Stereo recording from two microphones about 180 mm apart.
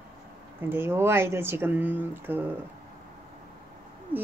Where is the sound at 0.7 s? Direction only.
15° right (ahead or behind).